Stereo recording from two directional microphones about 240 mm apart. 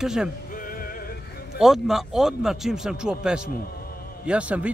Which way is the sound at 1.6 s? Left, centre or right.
Centre.